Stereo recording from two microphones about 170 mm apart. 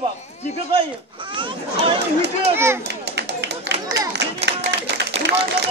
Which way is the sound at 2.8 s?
90° right.